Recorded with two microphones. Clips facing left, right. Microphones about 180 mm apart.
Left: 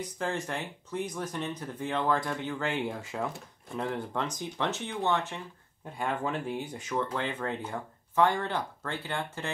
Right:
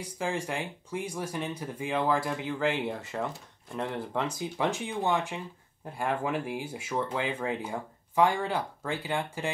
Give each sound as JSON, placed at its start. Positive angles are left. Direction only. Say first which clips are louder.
{"t": 0.0, "sound": "speech", "louder": "right 1 dB", "side_deg": -10}